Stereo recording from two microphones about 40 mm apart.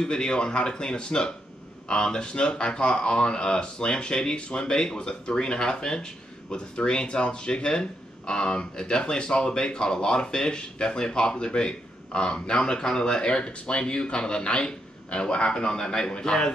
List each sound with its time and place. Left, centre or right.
0.0 s speech: left